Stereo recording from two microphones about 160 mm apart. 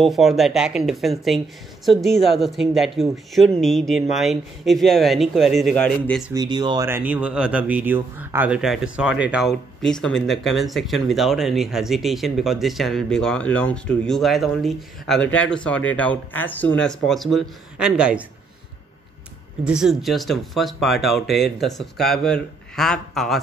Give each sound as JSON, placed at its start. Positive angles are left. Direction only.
{"t": 0.0, "sound": "speech", "side_deg": 0}
{"t": 6.3, "sound": "speech", "side_deg": -25}
{"t": 6.9, "sound": "speech", "side_deg": -10}
{"t": 19.6, "sound": "speech", "side_deg": -5}